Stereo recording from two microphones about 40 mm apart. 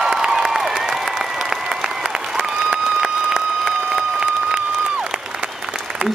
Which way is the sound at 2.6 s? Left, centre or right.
Centre.